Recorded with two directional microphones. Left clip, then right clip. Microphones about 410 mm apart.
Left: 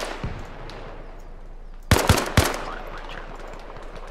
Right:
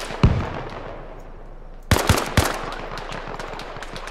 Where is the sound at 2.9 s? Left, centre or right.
Right.